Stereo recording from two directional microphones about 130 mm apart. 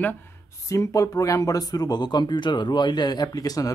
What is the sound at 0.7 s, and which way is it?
Speech, 25° left (ahead or behind).